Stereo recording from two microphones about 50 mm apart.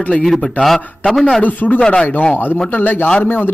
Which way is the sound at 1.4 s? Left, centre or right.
Left.